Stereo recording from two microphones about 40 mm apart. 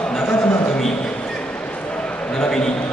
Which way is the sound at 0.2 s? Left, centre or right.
Left.